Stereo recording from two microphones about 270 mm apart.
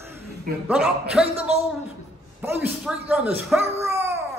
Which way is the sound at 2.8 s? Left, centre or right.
Centre.